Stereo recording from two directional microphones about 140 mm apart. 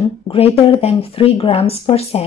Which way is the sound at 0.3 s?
45° left (ahead or behind).